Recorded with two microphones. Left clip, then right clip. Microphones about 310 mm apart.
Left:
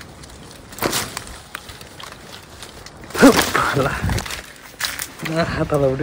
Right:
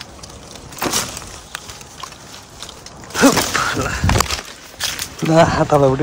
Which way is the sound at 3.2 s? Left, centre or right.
Centre.